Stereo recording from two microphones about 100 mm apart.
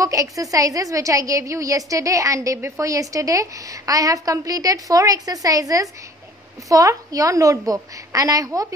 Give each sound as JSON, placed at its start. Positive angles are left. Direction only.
{"t": 0.0, "sound": "a woman's voice", "side_deg": -35}